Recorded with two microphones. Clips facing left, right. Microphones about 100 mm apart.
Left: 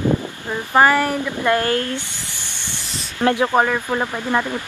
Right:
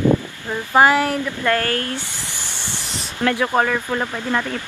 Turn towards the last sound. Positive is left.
turn(degrees=15)  # may be behind; listen again after turning